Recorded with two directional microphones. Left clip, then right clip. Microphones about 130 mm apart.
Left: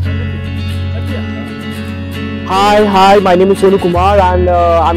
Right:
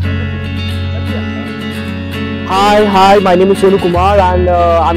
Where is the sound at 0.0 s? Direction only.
Centre (ahead or behind).